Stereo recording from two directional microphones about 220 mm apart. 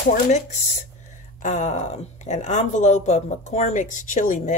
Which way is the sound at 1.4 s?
30° left (ahead or behind).